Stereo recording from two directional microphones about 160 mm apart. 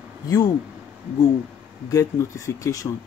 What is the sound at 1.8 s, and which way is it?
Speech, 20° left (ahead or behind).